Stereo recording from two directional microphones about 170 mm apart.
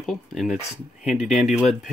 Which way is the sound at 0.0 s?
Centre (ahead or behind).